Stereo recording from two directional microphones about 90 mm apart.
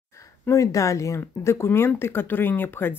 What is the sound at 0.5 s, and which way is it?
Speech, 35° left (ahead or behind).